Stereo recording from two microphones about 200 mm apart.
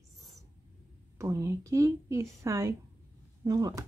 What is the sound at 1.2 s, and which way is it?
Speech, 15° right (ahead or behind).